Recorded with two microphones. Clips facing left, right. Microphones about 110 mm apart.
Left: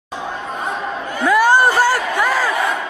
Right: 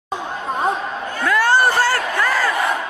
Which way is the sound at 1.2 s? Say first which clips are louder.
Left 3 dB; 15° left (ahead or behind).